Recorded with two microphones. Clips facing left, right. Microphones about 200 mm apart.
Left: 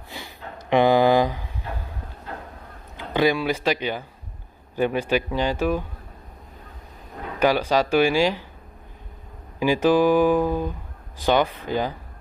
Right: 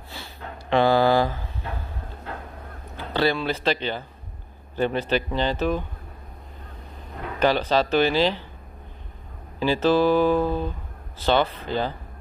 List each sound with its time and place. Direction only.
0.1 s a sound: 15° left (ahead or behind)
3.0 s speech: 15° left (ahead or behind)
7.3 s speech: 10° left (ahead or behind)
9.6 s speech: 15° left (ahead or behind)